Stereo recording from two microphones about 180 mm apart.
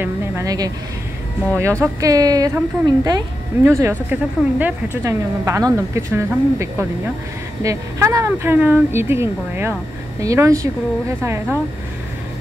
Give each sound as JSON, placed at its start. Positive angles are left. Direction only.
{"t": 0.0, "sound": "a woman's voice", "side_deg": -15}